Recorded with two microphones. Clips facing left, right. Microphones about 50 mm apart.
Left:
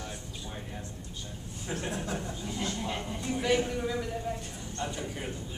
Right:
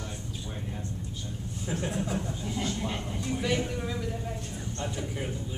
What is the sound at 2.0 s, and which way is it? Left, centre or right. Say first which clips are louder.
Speech: right 2 dB; centre.